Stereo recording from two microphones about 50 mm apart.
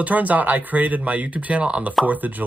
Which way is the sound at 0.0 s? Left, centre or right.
Right.